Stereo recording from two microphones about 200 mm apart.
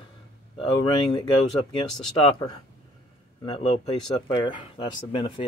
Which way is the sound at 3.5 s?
30° left (ahead or behind).